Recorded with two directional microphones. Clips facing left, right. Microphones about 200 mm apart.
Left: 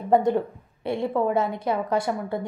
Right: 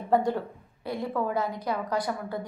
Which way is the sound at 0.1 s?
20° left (ahead or behind).